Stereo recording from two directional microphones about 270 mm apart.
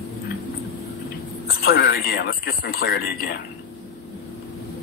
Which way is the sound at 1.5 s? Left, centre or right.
Left.